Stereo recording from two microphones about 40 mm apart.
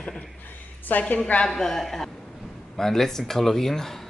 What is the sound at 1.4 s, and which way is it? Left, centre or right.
A man's voice, centre.